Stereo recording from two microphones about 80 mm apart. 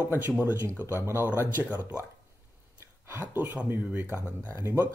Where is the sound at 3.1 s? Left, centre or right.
Right.